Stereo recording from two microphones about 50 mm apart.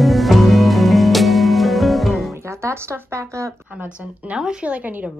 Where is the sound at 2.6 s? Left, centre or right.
Right.